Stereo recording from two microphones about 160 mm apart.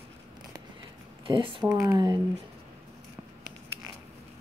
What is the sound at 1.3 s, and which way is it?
Speech, 35° right (ahead or behind).